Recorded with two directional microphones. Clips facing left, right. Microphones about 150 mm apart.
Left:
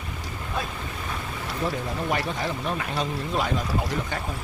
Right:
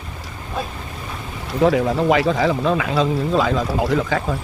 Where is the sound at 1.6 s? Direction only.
90° right.